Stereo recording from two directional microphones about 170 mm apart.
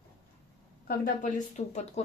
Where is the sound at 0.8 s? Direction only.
50° left (ahead or behind).